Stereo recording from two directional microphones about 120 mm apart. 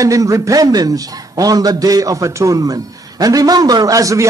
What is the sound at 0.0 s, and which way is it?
A man's voice, 30° right (ahead or behind).